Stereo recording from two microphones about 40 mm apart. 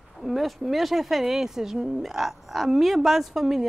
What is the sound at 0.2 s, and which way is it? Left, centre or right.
Speech, centre.